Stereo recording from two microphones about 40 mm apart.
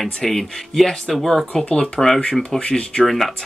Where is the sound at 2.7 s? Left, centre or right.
Centre.